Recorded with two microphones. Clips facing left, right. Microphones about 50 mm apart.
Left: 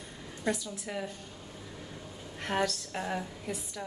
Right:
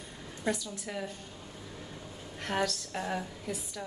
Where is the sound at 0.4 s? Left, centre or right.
Centre.